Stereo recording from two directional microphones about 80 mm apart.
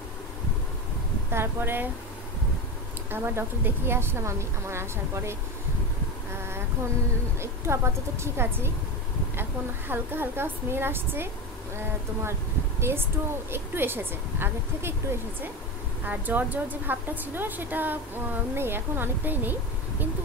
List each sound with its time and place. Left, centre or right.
1.3 s speech: right
3.1 s a woman's voice: right
7.3 s a woman's voice: right